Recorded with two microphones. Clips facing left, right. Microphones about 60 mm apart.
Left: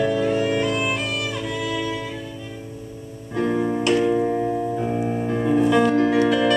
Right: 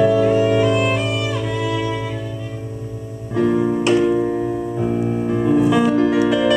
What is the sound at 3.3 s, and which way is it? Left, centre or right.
Music, centre.